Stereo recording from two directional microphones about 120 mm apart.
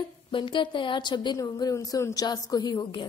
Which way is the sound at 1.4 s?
30° left (ahead or behind).